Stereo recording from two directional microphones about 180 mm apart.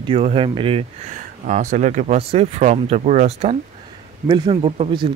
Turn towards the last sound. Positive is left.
turn(degrees=-30)  # may be behind; listen again after turning